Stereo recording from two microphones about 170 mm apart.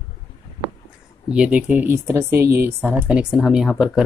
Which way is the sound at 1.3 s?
5° right (ahead or behind).